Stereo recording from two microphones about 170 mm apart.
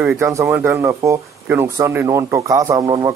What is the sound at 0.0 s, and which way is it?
Speech, 15° right (ahead or behind).